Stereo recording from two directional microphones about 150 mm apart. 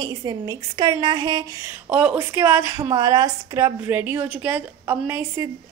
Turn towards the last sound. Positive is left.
turn(degrees=-20)  # may be behind; listen again after turning